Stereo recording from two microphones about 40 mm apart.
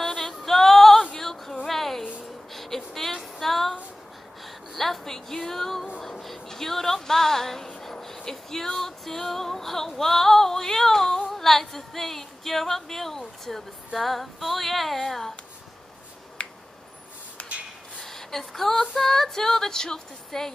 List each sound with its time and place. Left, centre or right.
0.0 s music: centre
1.1 s female singing: centre
1.7 s a sound: centre
4.7 s female singing: centre
5.9 s a sound: centre
8.3 s female singing: centre
11.2 s a sound: centre
13.5 s female singing: centre
16.4 s finger snapping: left
17.4 s a sound: left
18.0 s female singing: centre
20.2 s speech: centre